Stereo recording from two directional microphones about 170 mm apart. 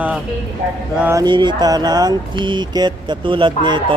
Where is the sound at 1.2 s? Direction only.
25° right (ahead or behind).